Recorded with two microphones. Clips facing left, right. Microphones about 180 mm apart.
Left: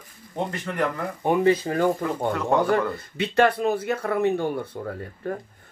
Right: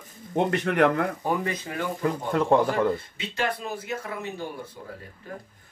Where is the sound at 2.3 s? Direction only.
30° right (ahead or behind).